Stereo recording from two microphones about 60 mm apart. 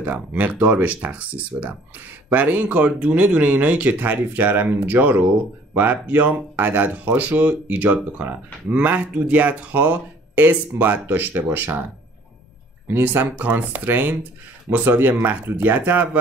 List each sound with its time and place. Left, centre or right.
0.0 s speech: right
12.8 s speech: right